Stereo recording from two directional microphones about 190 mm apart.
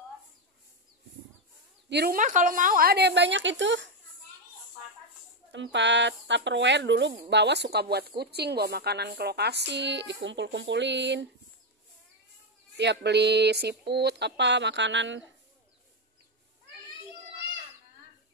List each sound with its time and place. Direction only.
1.9 s speech: 55° right (ahead or behind); by 3.9 s 75° right (ahead or behind)
5.5 s speech: 70° right (ahead or behind)
12.7 s speech: 65° right (ahead or behind)